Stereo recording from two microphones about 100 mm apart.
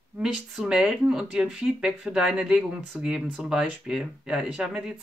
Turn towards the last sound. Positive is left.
turn(degrees=-10)  # may be behind; listen again after turning